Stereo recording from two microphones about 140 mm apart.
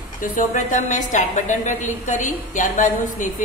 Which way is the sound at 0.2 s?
65° left (ahead or behind).